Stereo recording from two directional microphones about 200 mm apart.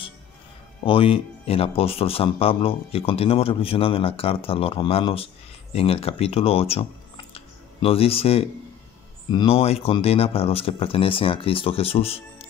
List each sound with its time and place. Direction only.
0.8 s speech: 25° left (ahead or behind)
7.3 s a sound: 30° left (ahead or behind)
9.3 s speech: 25° left (ahead or behind)